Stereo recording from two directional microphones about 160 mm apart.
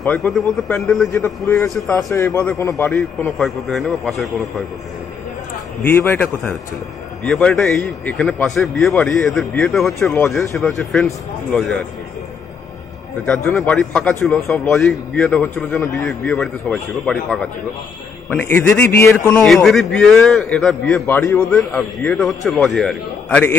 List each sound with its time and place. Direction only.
0.0 s a man's voice: 5° left (ahead or behind)
2.1 s a man's voice: 20° left (ahead or behind)
3.3 s a man's voice: centre (ahead or behind)
5.9 s a man's voice: 10° left (ahead or behind)
13.2 s a man's voice: 5° left (ahead or behind)
19.0 s a man's voice: 5° left (ahead or behind)
21.2 s a man's voice: 20° left (ahead or behind)
21.5 s a man's voice: 5° left (ahead or behind)